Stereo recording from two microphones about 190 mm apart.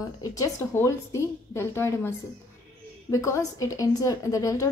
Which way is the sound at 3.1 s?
15° left (ahead or behind).